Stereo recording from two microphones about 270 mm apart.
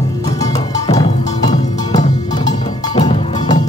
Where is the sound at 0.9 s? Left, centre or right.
Centre.